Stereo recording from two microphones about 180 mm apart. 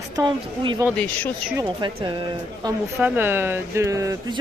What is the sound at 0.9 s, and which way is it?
Speech, 10° left (ahead or behind).